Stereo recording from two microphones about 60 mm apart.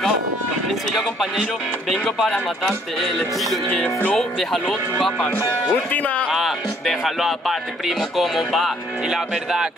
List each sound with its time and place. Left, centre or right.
0.9 s speech: centre
3.3 s speech: centre
3.8 s speech: centre
4.4 s speech: centre
5.3 s speech: left
6.3 s speech: centre